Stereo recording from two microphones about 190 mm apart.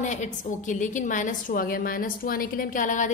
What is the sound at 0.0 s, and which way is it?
A woman's voice, 40° left (ahead or behind).